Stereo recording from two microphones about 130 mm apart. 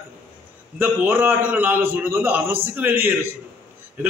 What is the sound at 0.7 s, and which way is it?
A man's voice, 15° right (ahead or behind).